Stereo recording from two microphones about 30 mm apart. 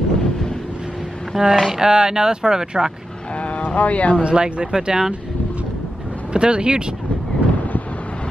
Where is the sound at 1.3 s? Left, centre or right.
Centre.